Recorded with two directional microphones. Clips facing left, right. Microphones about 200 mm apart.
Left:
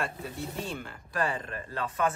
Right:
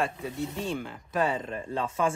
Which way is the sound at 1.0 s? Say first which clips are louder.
Right 3 dB; 20° right (ahead or behind).